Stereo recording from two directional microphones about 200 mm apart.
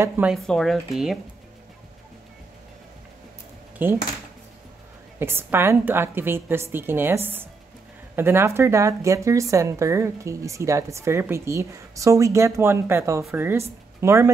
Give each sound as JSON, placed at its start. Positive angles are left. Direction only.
{"t": 0.0, "sound": "speech", "side_deg": -5}
{"t": 3.8, "sound": "speech", "side_deg": -10}
{"t": 5.2, "sound": "speech", "side_deg": -10}